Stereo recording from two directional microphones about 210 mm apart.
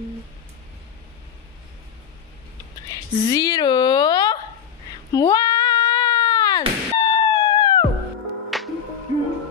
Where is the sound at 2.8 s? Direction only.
20° left (ahead or behind).